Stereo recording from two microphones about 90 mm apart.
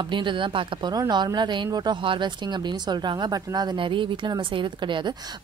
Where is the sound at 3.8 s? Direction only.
65° right (ahead or behind).